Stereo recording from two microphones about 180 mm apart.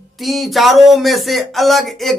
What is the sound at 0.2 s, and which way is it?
Speech, centre (ahead or behind).